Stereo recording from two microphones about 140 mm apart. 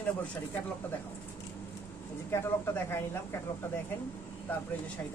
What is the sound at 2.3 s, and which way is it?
Speech, 15° left (ahead or behind).